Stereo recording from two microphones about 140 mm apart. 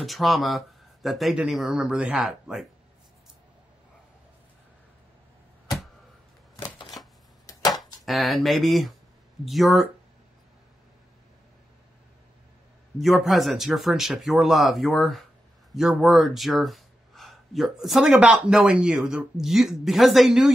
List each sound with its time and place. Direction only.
0.0 s speech: centre (ahead or behind)
7.4 s a sound: 25° left (ahead or behind)
8.0 s speech: centre (ahead or behind)
13.0 s speech: centre (ahead or behind)